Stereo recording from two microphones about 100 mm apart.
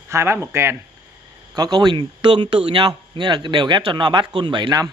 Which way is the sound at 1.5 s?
45° right (ahead or behind).